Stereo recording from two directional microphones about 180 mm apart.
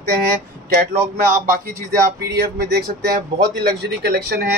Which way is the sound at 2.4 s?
60° right (ahead or behind).